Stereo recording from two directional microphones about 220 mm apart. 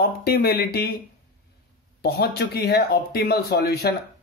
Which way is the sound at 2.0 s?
45° left (ahead or behind).